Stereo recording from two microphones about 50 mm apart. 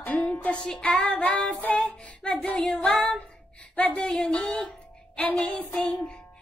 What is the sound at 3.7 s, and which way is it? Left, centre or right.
Speech, left.